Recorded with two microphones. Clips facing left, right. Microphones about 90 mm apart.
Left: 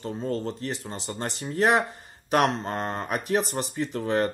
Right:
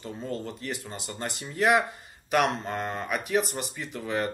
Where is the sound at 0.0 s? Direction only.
40° left (ahead or behind).